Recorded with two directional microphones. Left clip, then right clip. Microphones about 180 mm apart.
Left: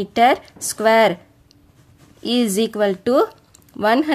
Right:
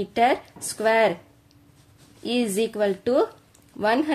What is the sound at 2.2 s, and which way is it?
A woman's voice, 30° left (ahead or behind).